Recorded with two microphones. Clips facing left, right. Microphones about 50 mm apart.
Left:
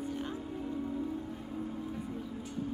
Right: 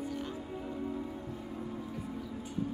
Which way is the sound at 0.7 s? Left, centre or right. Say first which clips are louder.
Even; centre.